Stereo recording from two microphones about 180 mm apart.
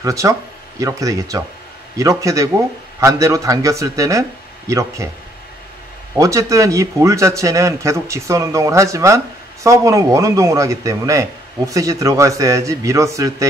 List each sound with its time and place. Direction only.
0.0 s speech: 15° right (ahead or behind)
6.1 s speech: 15° right (ahead or behind)